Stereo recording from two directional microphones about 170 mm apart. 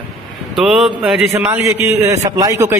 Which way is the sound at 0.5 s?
Centre (ahead or behind).